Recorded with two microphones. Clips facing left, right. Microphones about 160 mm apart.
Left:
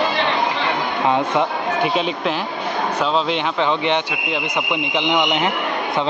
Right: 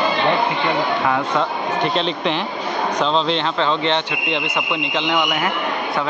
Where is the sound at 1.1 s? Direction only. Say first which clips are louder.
Left 2 dB; 20° left (ahead or behind).